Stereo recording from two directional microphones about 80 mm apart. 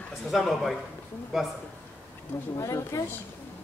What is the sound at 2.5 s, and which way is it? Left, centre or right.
Speech, left.